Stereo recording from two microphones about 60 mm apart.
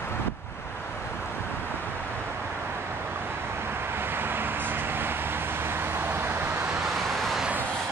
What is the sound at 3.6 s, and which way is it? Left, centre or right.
Vehicle, right.